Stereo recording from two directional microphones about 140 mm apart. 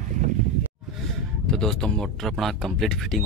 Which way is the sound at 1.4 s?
5° left (ahead or behind).